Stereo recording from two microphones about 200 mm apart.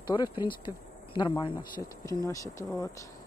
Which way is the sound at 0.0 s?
25° left (ahead or behind).